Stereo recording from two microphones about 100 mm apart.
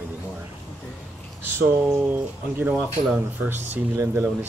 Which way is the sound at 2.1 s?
20° right (ahead or behind).